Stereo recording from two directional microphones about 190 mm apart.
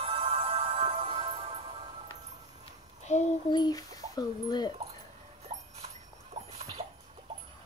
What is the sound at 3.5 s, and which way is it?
Speech, 20° left (ahead or behind).